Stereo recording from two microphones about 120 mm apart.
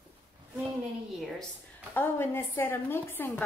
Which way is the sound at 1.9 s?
20° left (ahead or behind).